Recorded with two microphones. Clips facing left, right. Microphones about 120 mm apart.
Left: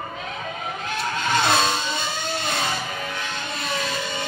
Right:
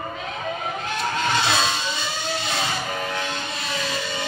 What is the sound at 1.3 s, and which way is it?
Vehicle, 50° left (ahead or behind).